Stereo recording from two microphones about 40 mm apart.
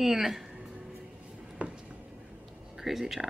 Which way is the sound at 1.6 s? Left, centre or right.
Right.